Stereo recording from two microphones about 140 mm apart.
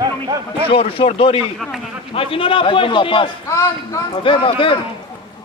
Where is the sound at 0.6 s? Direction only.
40° left (ahead or behind).